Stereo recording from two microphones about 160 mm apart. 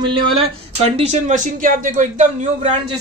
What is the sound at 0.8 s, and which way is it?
Speech, 40° right (ahead or behind).